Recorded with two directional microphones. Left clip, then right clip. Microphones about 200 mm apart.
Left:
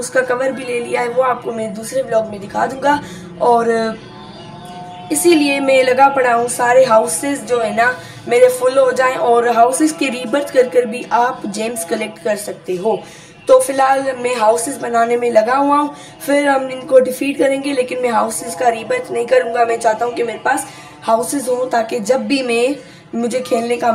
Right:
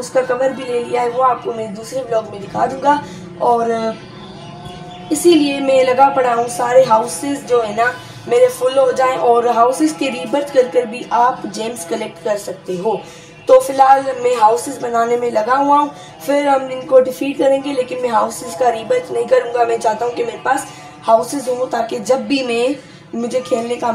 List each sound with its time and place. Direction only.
0.0 s a woman's voice: 5° left (ahead or behind)
5.1 s a woman's voice: 10° left (ahead or behind)